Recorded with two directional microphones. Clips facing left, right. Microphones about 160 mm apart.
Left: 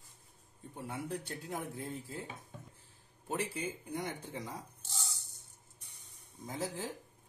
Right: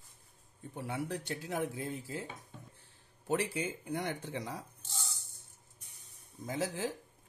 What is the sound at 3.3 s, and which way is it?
Speech, 75° right (ahead or behind).